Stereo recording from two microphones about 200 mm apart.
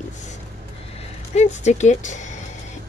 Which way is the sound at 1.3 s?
35° left (ahead or behind).